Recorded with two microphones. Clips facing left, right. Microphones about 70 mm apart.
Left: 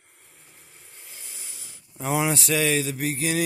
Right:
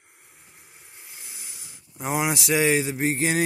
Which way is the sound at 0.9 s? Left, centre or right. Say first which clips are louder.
Right 1 dB; centre.